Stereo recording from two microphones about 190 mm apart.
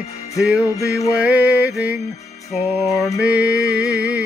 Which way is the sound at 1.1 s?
5° right (ahead or behind).